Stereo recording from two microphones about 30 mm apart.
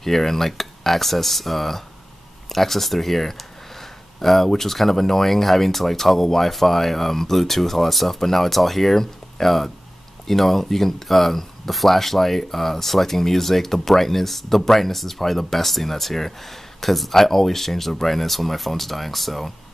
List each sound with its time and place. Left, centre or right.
0.0 s speech: centre